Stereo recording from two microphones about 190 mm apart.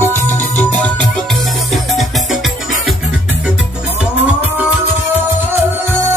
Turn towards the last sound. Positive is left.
turn(degrees=-5)  # may be behind; listen again after turning